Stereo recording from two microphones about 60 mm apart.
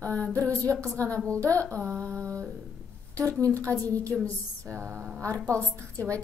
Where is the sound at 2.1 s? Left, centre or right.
Right.